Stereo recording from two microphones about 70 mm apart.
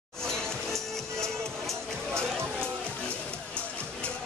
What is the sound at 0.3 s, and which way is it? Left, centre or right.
Music, centre.